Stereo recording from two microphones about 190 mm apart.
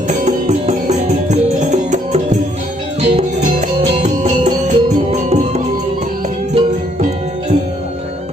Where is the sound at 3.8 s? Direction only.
30° right (ahead or behind).